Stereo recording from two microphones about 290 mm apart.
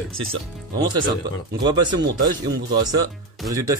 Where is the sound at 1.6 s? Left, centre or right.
Centre.